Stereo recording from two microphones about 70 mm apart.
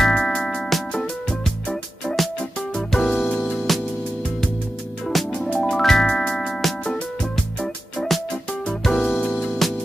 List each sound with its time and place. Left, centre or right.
0.0 s music: centre
0.6 s music: centre
3.3 s music: centre
3.5 s music: centre
5.0 s music: centre